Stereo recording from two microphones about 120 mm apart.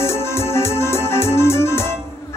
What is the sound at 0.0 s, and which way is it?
Music, 20° left (ahead or behind).